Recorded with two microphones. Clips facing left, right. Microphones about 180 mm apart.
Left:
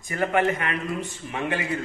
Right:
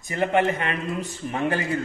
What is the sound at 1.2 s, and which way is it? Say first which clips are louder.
Speech: right 4 dB; 40° right (ahead or behind).